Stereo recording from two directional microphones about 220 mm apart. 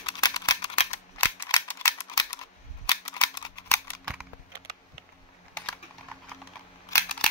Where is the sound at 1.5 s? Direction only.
15° left (ahead or behind).